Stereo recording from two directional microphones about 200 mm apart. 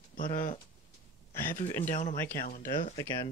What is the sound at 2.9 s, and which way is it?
Speech, 20° left (ahead or behind).